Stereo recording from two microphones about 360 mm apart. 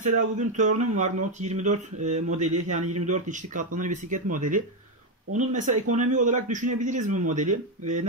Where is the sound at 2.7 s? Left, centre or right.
Right.